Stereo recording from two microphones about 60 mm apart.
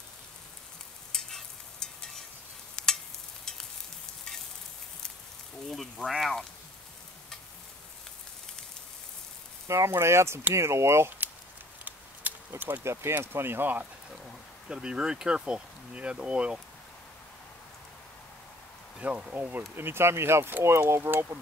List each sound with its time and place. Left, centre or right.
1.1 s stir: centre
5.7 s speech: centre
9.7 s speech: right
11.8 s a sound: right
12.8 s speech: right
14.1 s speech: centre
18.9 s speech: centre
19.7 s speech: right